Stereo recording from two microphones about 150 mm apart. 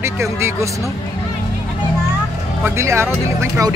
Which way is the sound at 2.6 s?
20° right (ahead or behind).